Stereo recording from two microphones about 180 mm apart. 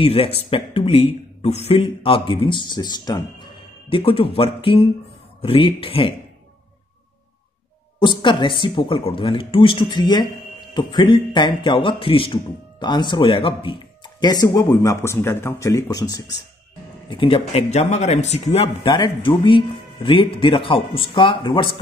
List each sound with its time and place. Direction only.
0.0 s speech: 35° left (ahead or behind)
8.0 s a man's voice: 25° left (ahead or behind)